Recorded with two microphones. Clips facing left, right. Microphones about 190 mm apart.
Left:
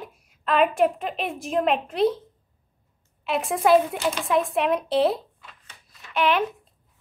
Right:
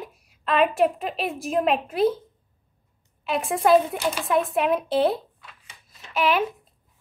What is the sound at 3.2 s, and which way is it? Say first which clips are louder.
A woman's voice: even; centre (ahead or behind).